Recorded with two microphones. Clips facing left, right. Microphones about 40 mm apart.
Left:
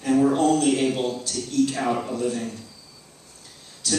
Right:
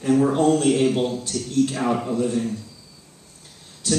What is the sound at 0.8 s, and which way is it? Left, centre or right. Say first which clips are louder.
Speech: right 3 dB; centre.